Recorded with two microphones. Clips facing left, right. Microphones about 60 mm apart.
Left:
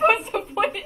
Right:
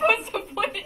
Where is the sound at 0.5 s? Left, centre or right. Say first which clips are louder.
Left 4 dB; centre.